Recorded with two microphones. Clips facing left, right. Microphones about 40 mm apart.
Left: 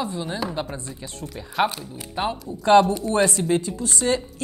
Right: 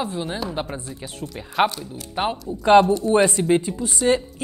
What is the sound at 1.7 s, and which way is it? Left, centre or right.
Speech, left.